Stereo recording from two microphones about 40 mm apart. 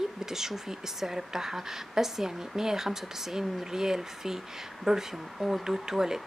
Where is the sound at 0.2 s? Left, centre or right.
Centre.